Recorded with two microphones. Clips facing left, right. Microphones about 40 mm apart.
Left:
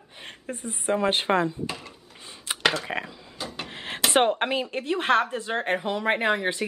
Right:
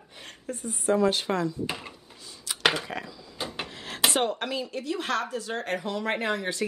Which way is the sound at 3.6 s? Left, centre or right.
Left.